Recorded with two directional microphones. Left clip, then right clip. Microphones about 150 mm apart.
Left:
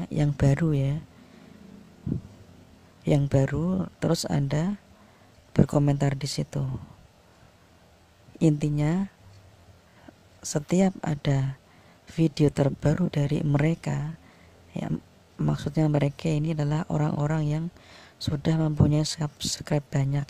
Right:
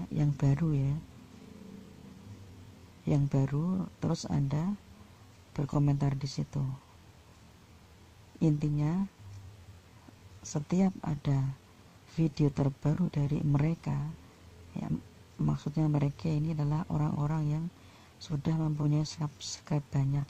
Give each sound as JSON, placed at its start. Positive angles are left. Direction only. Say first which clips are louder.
{"t": 0.0, "sound": "speech", "louder": "left 7 dB", "side_deg": 30}
{"t": 3.1, "sound": "speech", "louder": "left 8 dB", "side_deg": 30}
{"t": 8.4, "sound": "speech", "louder": "left 7 dB", "side_deg": 30}
{"t": 10.5, "sound": "speech", "louder": "left 8 dB", "side_deg": 30}